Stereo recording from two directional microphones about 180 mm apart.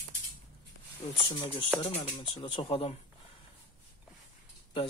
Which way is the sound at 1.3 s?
30° left (ahead or behind).